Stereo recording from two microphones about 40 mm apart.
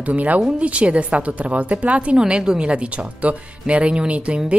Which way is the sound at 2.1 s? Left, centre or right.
Right.